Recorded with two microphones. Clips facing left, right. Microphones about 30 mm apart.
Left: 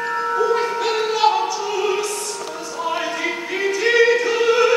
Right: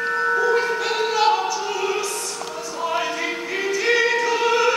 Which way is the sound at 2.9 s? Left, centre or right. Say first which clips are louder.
Left 1 dB; centre.